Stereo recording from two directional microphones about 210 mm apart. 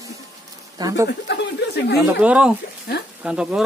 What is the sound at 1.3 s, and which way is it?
Speech, 55° left (ahead or behind).